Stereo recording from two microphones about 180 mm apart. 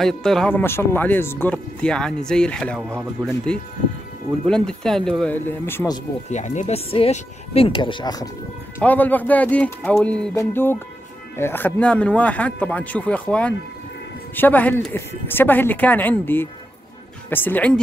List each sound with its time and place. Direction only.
0.0 s speech: centre (ahead or behind)
6.3 s speech: 40° left (ahead or behind); by 8.3 s 20° left (ahead or behind)
8.7 s speech: 10° left (ahead or behind)